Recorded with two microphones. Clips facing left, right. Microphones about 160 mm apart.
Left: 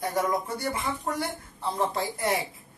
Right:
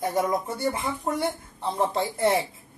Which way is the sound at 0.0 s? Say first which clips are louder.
Right 2 dB; 25° right (ahead or behind).